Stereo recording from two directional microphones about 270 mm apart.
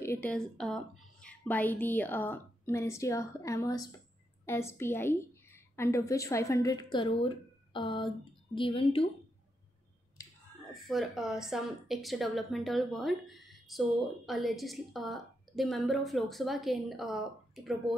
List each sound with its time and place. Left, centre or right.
0.0 s a woman's voice: centre
10.7 s speech: centre